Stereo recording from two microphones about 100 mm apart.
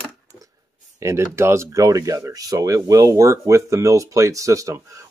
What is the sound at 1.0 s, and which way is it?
Speech, 25° right (ahead or behind).